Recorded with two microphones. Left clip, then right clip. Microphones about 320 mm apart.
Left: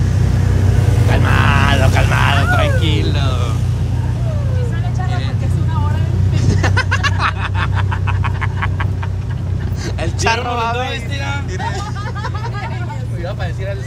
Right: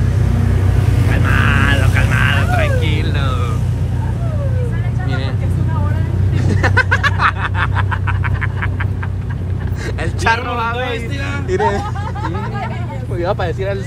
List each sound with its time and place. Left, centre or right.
1.1 s vehicle: centre
6.3 s a sound: centre
10.2 s vehicle: centre
13.2 s vehicle: centre